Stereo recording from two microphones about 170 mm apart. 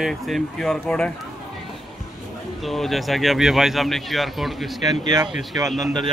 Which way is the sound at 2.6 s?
Centre (ahead or behind).